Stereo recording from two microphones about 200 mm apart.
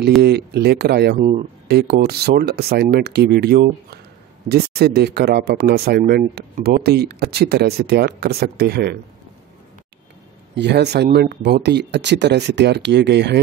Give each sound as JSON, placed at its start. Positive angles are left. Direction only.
{"t": 0.2, "sound": "speech", "side_deg": -55}
{"t": 10.5, "sound": "speech", "side_deg": -60}